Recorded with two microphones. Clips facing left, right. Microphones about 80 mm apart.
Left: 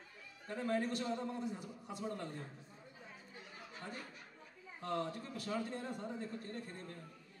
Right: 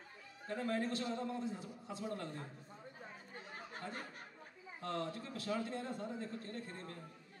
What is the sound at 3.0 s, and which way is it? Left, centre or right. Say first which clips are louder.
Chatter: right 1 dB; right.